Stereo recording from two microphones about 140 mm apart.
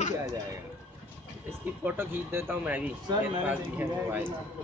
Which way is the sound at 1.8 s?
15° right (ahead or behind).